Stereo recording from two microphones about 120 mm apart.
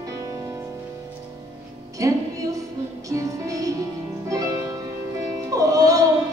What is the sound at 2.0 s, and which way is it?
Music, 25° right (ahead or behind).